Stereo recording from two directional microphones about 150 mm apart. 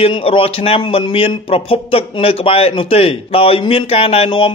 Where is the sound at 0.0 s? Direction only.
35° left (ahead or behind).